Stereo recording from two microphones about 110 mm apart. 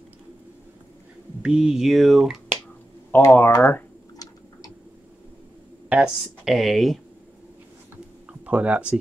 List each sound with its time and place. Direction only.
1.4 s speech: 5° right (ahead or behind)
3.3 s speech: 20° left (ahead or behind)
5.9 s speech: 10° right (ahead or behind)
8.3 s speech: 10° right (ahead or behind)